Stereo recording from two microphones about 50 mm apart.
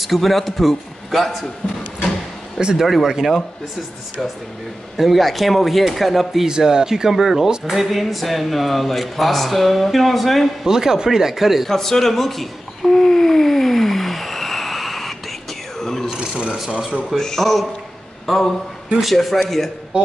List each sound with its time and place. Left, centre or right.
0.0 s speech: centre
2.6 s speech: centre
4.9 s speech: centre
6.5 s speech: centre
10.6 s speech: centre
11.7 s a sound: centre
16.2 s a sound: centre
17.1 s a man's voice: centre